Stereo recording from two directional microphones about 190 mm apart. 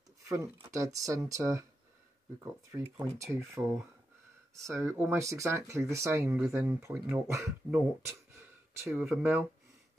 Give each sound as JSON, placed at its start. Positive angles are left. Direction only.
{"t": 0.2, "sound": "speech", "side_deg": -15}
{"t": 3.3, "sound": "speech", "side_deg": -15}